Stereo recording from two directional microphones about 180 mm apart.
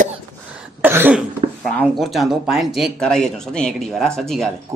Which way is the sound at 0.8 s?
10° right (ahead or behind).